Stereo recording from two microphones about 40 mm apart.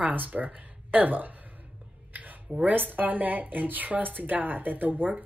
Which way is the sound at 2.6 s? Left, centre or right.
Right.